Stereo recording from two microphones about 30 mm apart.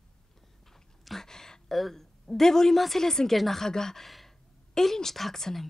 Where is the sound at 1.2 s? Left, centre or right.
Centre.